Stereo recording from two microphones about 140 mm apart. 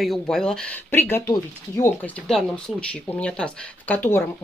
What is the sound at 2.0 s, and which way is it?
Speech, 5° left (ahead or behind).